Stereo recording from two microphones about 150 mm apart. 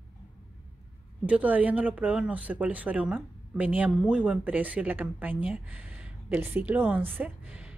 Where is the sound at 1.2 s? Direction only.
10° right (ahead or behind).